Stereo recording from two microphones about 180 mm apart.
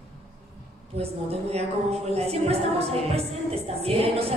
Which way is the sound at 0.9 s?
35° right (ahead or behind).